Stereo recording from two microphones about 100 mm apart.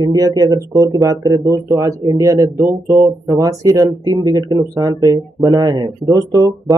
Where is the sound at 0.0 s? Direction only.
40° right (ahead or behind).